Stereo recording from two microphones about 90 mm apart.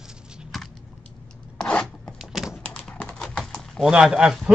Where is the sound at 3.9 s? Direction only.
10° right (ahead or behind).